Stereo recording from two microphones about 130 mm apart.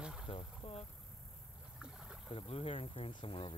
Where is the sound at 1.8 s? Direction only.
5° right (ahead or behind).